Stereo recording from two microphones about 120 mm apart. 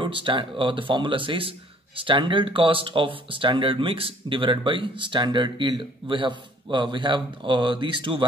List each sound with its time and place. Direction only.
0.0 s speech: 45° right (ahead or behind)